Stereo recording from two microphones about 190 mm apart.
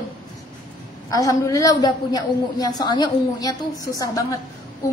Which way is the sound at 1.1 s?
15° left (ahead or behind).